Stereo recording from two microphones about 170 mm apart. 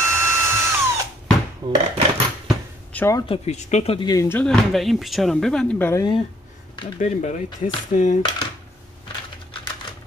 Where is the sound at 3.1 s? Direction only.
30° left (ahead or behind).